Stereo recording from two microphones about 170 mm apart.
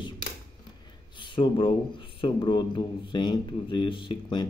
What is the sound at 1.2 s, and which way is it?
Speech, 30° left (ahead or behind).